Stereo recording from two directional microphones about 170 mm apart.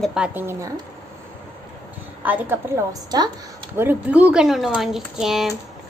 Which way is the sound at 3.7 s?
10° right (ahead or behind).